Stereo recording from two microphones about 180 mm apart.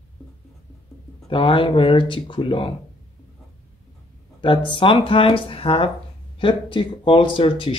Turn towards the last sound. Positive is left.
turn(degrees=30)  # may be behind; listen again after turning